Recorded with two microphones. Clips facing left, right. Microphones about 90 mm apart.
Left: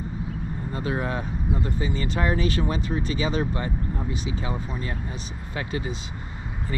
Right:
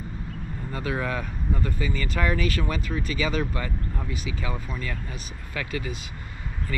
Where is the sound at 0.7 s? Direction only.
30° left (ahead or behind).